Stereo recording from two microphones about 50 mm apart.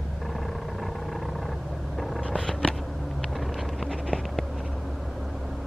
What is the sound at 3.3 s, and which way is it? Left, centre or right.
Vehicle, centre.